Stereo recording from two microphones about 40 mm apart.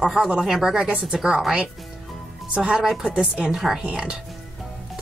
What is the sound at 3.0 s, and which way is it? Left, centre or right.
Speech, right.